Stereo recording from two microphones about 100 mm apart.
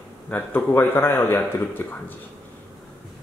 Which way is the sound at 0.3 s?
15° left (ahead or behind).